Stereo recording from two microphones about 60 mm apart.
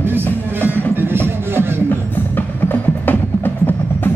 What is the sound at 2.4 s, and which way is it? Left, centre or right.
Music, left.